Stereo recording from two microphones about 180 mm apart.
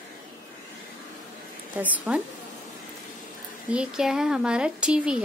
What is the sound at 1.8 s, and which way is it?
Speech, 10° right (ahead or behind).